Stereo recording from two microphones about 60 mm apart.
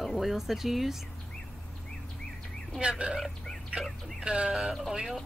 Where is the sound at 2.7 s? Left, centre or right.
Centre.